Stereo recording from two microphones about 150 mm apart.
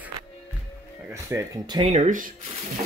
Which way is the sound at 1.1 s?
20° right (ahead or behind).